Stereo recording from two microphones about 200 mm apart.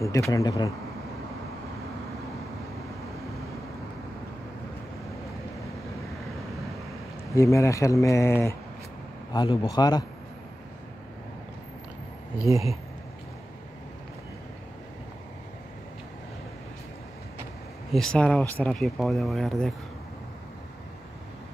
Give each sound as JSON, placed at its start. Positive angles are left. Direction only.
{"t": 0.3, "sound": "speech", "side_deg": 20}
{"t": 7.3, "sound": "a man's voice", "side_deg": 15}
{"t": 12.5, "sound": "speech", "side_deg": -15}
{"t": 17.9, "sound": "speech", "side_deg": 5}